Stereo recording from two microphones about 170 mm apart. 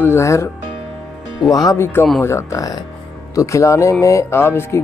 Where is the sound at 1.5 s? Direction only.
20° left (ahead or behind).